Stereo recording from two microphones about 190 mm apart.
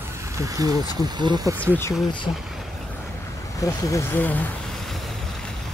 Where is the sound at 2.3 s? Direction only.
25° left (ahead or behind).